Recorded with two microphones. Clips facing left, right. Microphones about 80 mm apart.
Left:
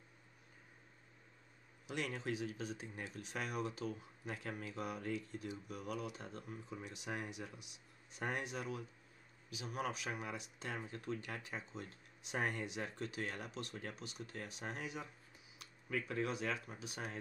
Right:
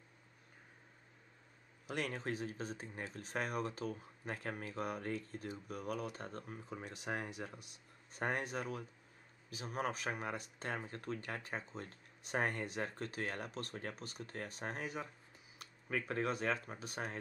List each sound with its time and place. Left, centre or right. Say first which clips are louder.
1.9 s speech: right 1 dB; right
16.1 s speech: right 4 dB; right